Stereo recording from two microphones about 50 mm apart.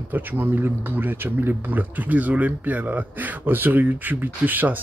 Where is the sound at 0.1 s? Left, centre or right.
Right.